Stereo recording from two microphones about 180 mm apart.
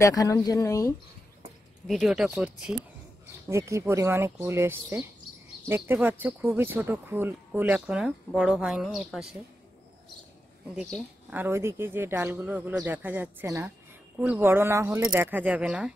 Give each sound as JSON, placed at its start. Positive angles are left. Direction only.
{"t": 0.0, "sound": "speech", "side_deg": 20}
{"t": 1.9, "sound": "speech", "side_deg": 0}
{"t": 3.4, "sound": "speech", "side_deg": -15}
{"t": 10.8, "sound": "speech", "side_deg": -5}